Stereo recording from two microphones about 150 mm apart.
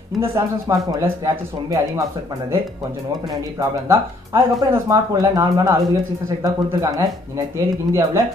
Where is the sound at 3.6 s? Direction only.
20° right (ahead or behind).